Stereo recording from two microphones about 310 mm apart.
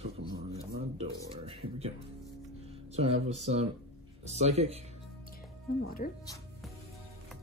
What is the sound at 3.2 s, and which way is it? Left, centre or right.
Speech, right.